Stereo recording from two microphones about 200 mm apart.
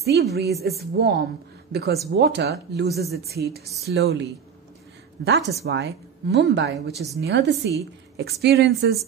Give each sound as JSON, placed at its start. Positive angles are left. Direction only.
{"t": 0.0, "sound": "speech", "side_deg": -55}